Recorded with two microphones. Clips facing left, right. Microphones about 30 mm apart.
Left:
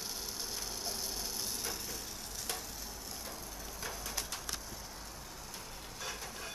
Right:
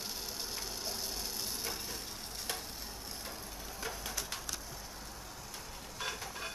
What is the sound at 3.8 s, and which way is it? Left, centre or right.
Bird, centre.